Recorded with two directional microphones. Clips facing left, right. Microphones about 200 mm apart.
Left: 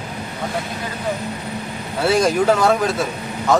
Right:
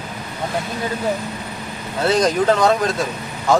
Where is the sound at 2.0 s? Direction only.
10° left (ahead or behind).